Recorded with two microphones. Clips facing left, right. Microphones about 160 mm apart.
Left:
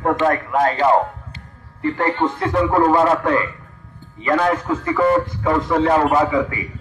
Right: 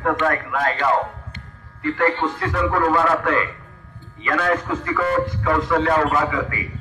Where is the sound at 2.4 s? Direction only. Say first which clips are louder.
Left 4 dB; 25° left (ahead or behind).